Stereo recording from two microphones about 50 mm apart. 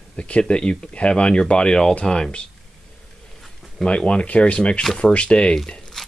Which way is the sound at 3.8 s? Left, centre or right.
Centre.